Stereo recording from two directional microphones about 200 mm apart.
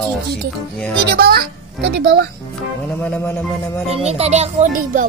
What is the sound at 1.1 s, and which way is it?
A child's voice, 50° right (ahead or behind).